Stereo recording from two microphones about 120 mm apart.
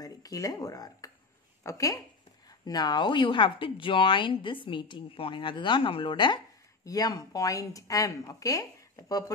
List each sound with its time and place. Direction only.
0.0 s speech: 30° left (ahead or behind)
6.8 s speech: 30° left (ahead or behind)